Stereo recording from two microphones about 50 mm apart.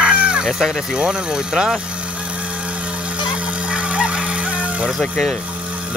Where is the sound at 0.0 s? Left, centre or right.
Centre.